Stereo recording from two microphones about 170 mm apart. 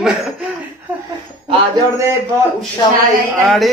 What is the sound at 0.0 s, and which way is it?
Chuckle, 5° right (ahead or behind).